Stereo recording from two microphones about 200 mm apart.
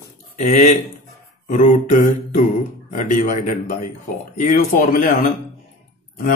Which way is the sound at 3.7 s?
40° left (ahead or behind).